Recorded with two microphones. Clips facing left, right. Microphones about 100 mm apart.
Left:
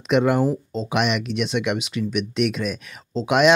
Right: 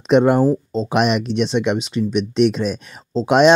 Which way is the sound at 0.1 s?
35° right (ahead or behind).